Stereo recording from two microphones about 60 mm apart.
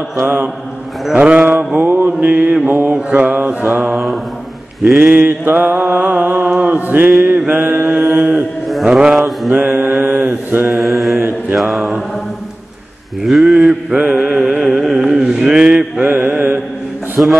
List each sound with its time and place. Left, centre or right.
1.1 s mantra: right
1.8 s mantra: right
3.9 s mantra: centre
5.1 s mantra: right
8.8 s mantra: centre
9.5 s mantra: right
10.8 s mantra: centre
13.2 s a sound: centre
14.1 s music: centre
14.6 s carnatic music: centre
15.6 s mantra: right